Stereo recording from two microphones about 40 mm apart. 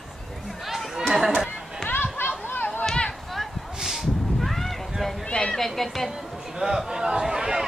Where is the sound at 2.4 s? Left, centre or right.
Left.